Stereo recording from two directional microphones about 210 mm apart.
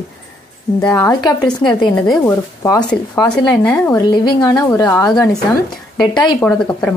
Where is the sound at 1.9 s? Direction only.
5° left (ahead or behind).